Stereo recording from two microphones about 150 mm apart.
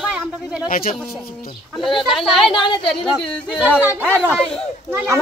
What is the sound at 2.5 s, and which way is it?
Speech, 30° left (ahead or behind).